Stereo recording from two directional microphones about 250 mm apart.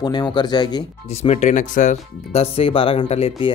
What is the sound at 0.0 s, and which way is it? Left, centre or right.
Speech, centre.